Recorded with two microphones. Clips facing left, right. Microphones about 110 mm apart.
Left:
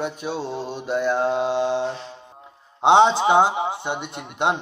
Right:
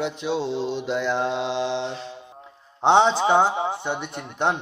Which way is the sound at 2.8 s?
15° left (ahead or behind).